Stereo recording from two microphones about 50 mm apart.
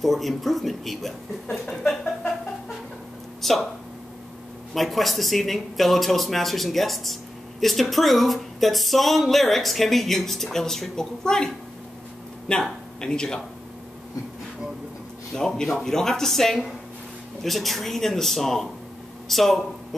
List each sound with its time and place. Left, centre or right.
0.0 s speech: centre
3.4 s speech: centre
4.7 s speech: centre
15.3 s speech: centre